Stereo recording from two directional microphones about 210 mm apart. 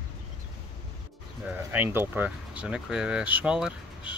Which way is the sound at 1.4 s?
10° right (ahead or behind).